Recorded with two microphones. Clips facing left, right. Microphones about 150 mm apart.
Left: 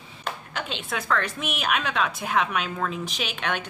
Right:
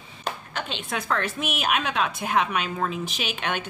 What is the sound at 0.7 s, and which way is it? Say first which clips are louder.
A woman's voice: left 1 dB; centre (ahead or behind).